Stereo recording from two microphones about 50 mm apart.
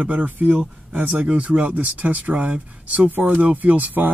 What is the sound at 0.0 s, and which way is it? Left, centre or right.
Speech, right.